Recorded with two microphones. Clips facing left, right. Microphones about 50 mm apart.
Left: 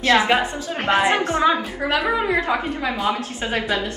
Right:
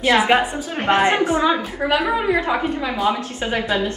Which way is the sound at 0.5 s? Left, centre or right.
Right.